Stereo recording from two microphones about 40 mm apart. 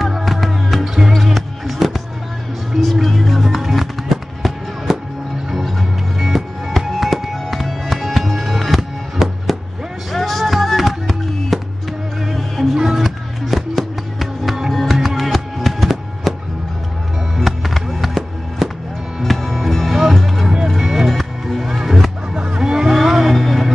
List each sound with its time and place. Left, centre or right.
0.0 s music: centre
10.1 s music: centre
12.7 s music: centre
13.0 s music: centre
17.4 s music: centre
19.9 s music: centre
22.3 s music: right
22.6 s vehicle: centre
22.8 s vehicle: centre
23.2 s music: centre